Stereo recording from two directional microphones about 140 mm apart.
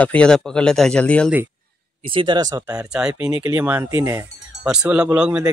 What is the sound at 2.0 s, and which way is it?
Speech, 35° right (ahead or behind).